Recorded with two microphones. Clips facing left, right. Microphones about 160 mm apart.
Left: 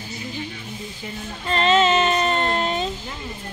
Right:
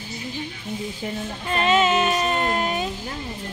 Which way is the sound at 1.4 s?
10° right (ahead or behind).